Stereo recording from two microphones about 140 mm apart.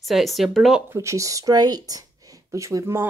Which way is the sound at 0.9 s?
20° right (ahead or behind).